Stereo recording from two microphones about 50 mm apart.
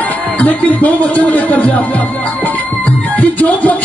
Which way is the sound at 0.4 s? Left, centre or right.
Left.